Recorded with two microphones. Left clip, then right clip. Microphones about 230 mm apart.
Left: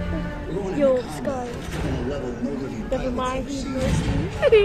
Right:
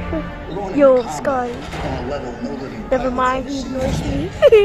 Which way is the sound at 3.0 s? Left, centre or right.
Centre.